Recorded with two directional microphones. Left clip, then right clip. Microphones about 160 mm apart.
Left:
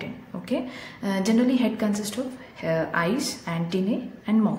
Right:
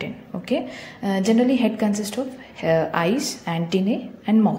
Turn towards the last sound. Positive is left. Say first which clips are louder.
# right 4 dB
turn(degrees=-25)  # may be behind; listen again after turning